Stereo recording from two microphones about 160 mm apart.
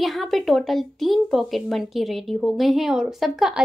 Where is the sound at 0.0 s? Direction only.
Centre (ahead or behind).